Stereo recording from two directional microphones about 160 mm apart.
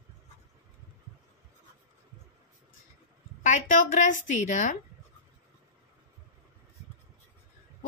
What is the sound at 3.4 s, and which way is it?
A woman's voice, 50° left (ahead or behind).